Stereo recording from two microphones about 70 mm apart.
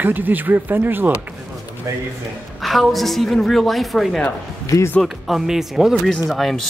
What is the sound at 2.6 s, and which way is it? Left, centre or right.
A woman's voice, centre.